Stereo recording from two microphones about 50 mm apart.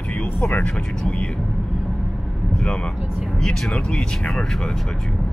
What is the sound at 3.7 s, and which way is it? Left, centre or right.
Speech, centre.